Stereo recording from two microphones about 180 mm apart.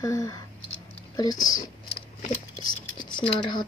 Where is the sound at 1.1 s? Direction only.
20° left (ahead or behind).